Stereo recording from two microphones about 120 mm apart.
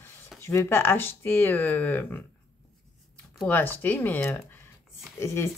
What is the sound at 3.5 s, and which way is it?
Speech, 15° left (ahead or behind).